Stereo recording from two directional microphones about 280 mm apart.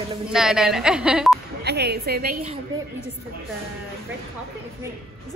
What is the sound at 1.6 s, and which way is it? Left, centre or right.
Speech, right.